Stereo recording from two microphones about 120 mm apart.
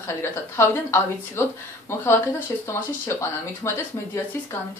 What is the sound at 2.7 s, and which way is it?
A woman's voice, 20° left (ahead or behind).